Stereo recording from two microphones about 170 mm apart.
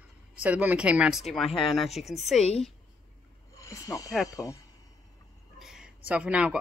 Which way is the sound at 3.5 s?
20° left (ahead or behind).